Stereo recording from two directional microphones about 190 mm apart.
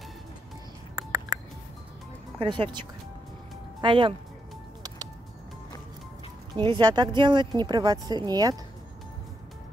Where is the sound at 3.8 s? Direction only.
25° right (ahead or behind).